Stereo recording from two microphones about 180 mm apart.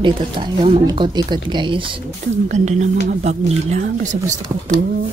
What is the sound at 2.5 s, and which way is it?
Speech, 40° right (ahead or behind).